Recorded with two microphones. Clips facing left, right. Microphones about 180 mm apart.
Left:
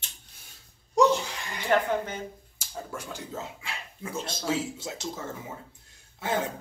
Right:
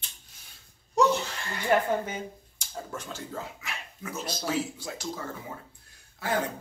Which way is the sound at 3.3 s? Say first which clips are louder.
Even; 30° left (ahead or behind).